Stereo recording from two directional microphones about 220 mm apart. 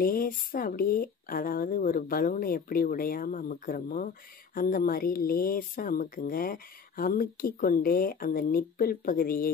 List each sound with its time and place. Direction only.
0.0 s speech: 40° left (ahead or behind)